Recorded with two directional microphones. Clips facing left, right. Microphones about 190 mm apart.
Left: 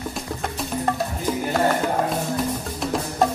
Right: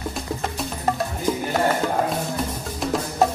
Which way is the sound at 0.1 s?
Centre (ahead or behind).